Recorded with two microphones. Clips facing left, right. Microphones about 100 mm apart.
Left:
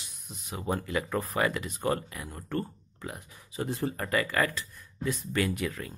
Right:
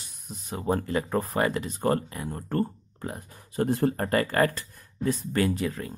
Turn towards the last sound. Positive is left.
turn(degrees=-30)  # may be behind; listen again after turning